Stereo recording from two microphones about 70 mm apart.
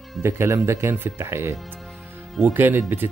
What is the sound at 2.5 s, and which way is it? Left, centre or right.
Speech, right.